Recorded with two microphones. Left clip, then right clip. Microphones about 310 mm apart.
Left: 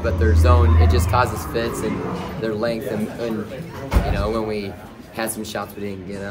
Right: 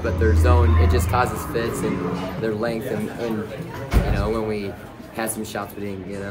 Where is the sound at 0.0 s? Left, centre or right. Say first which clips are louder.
Left 1 dB; centre.